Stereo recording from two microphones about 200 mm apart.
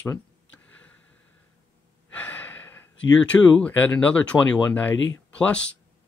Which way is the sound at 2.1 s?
10° left (ahead or behind).